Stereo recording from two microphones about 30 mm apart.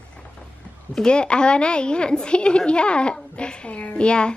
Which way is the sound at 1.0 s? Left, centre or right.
Left.